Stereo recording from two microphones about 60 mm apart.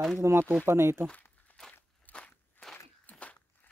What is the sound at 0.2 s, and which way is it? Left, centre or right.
Speech, right.